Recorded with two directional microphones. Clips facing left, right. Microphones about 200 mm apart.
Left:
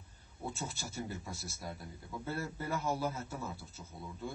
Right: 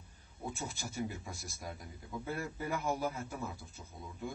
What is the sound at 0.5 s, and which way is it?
A man's voice, 15° right (ahead or behind).